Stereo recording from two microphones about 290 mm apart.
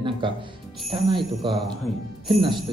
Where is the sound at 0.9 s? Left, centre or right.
Centre.